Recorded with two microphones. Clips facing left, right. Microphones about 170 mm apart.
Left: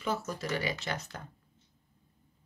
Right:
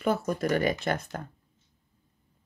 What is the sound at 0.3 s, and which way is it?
Speech, 55° right (ahead or behind).